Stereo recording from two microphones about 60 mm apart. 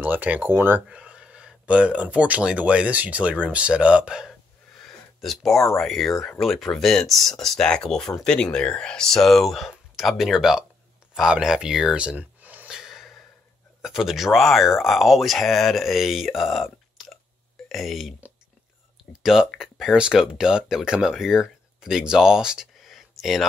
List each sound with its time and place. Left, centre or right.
0.0 s speech: right
0.8 s speech: centre
4.7 s a sound: centre
5.8 s speech: centre
12.0 s a sound: right
12.6 s gasp: centre
13.8 s speech: centre
19.2 s speech: centre
22.8 s a sound: centre